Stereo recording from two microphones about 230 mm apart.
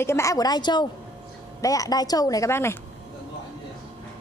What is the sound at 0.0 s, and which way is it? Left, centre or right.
Speech, centre.